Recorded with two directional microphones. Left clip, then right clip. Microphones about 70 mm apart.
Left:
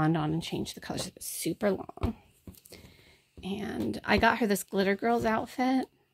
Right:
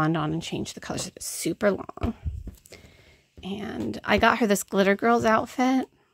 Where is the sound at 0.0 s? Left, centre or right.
Right.